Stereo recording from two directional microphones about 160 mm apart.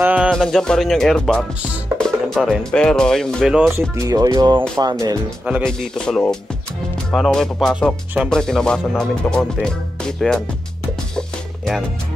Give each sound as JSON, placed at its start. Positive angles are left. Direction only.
{"t": 0.0, "sound": "music", "side_deg": -10}
{"t": 0.3, "sound": "speech", "side_deg": 0}
{"t": 3.9, "sound": "speech", "side_deg": -20}
{"t": 5.6, "sound": "speech", "side_deg": 5}
{"t": 11.1, "sound": "music", "side_deg": 5}